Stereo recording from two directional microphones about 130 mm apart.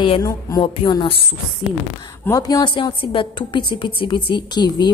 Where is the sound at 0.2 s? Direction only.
25° left (ahead or behind).